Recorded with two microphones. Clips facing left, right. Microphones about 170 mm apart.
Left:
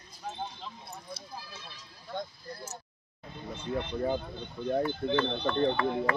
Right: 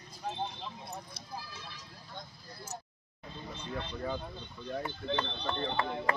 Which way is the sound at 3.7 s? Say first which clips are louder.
Left 7 dB; 20° left (ahead or behind).